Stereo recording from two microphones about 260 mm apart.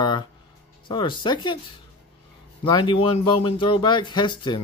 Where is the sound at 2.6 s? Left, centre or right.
Centre.